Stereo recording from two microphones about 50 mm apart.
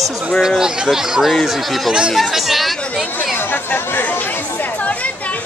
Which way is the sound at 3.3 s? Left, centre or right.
Left.